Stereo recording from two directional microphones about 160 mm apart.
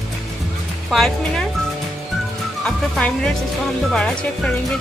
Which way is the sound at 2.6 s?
5° left (ahead or behind).